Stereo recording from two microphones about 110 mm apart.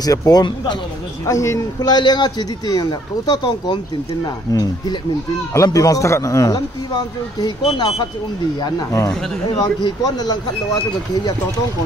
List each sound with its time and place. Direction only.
0.0 s a man's voice: 35° left (ahead or behind)
1.2 s a man's voice: 30° left (ahead or behind)
7.7 s a man's voice: 40° left (ahead or behind)